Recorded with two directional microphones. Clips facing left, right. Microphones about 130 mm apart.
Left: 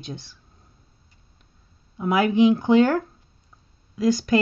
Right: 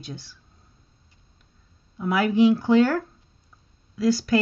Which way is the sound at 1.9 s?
20° left (ahead or behind).